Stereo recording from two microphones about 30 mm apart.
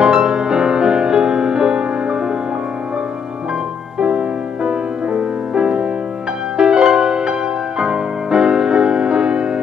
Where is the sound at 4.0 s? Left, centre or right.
Right.